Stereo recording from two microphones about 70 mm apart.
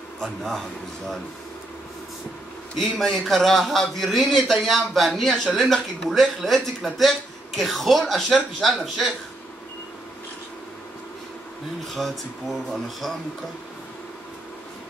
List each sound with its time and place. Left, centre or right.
0.2 s speech: centre
3.0 s speech: centre
11.9 s speech: centre